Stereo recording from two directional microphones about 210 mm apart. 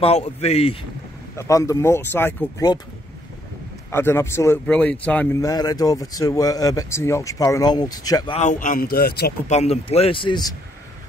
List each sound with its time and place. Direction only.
0.0 s speech: 30° left (ahead or behind)
1.3 s speech: 15° left (ahead or behind)
3.9 s speech: 10° left (ahead or behind)
8.4 s a man's voice: 35° left (ahead or behind)
9.5 s speech: 30° left (ahead or behind)